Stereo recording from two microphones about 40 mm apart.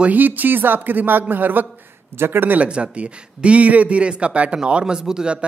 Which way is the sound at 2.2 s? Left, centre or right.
Right.